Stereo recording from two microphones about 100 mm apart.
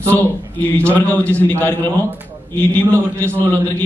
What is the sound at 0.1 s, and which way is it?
A man's voice, 15° left (ahead or behind).